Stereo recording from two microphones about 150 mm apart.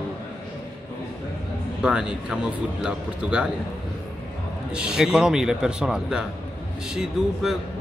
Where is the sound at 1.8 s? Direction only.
5° right (ahead or behind).